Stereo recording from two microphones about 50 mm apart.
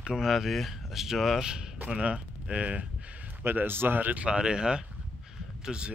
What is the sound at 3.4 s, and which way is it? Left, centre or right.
Speech, right.